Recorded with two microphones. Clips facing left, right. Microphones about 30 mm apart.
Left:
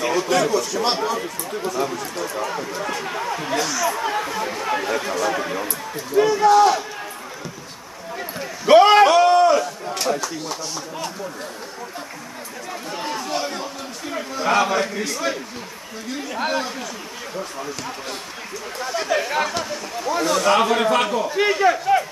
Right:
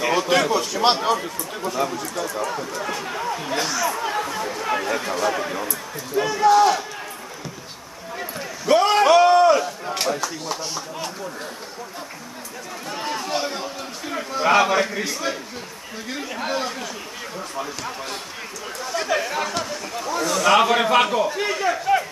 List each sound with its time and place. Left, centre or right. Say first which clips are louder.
0.0 s speech: even; centre
0.8 s a man's voice: right 7 dB; centre
2.0 s speech: even; centre
3.5 s a man's voice: left 2 dB; centre
3.9 s a man's voice: left 1 dB; centre
8.6 s a sound: left 6 dB; left
9.0 s a sound: even; centre
10.0 s a man's voice: left 2 dB; centre
12.9 s chatter: right 1 dB; centre
16.1 s a man's voice: left 3 dB; centre
18.8 s a man's voice: left 1 dB; centre
20.4 s a man's voice: right 2 dB; centre
21.4 s speech: left 5 dB; centre
21.7 s a sound: left 1 dB; centre